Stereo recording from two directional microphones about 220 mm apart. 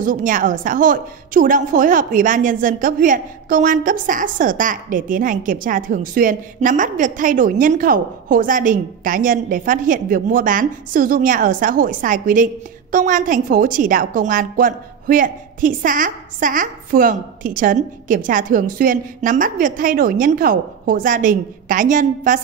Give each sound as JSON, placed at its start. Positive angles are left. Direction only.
{"t": 0.0, "sound": "a woman's voice", "side_deg": -35}